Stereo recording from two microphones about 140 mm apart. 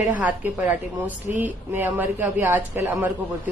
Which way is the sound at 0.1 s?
10° right (ahead or behind).